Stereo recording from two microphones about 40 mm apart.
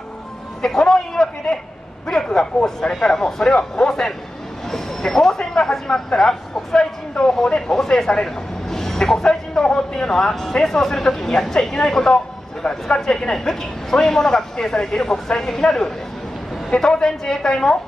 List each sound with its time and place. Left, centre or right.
0.6 s a man's voice: centre
5.0 s speech: centre